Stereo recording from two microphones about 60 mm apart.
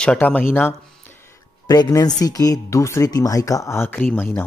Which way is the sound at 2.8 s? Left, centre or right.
Left.